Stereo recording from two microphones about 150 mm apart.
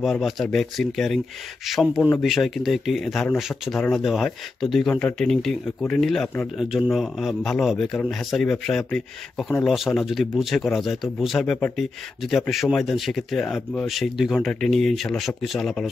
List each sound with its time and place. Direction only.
0.0 s a man's voice: centre (ahead or behind)